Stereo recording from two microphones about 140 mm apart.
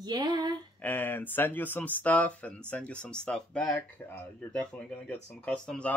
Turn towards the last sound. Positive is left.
turn(degrees=10)  # may be behind; listen again after turning